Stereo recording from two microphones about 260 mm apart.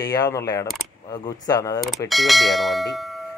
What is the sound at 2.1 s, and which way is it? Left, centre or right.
Speech, centre.